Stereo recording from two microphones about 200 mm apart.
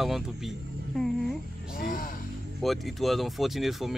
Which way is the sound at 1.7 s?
45° left (ahead or behind).